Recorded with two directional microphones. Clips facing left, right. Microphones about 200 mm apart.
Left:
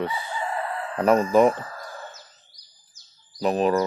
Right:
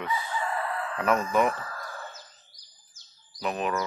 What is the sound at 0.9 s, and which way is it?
Speech, 35° left (ahead or behind).